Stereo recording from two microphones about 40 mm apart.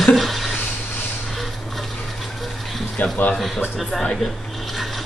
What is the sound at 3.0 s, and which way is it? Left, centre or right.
Speech, left.